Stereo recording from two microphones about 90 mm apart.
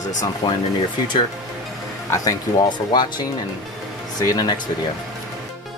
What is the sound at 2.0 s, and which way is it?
Speech, 40° left (ahead or behind).